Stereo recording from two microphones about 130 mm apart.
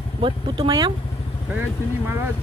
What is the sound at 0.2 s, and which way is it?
Speech, 35° right (ahead or behind).